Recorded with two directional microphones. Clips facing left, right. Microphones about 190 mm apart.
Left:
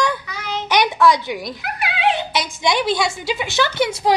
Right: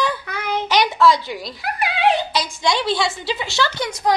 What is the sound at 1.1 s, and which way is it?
Speech, 20° left (ahead or behind).